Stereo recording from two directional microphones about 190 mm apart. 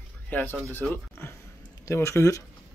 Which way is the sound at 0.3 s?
10° left (ahead or behind).